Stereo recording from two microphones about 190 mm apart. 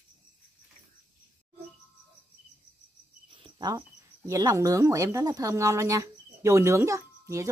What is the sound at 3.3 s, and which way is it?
Cricket, 25° right (ahead or behind).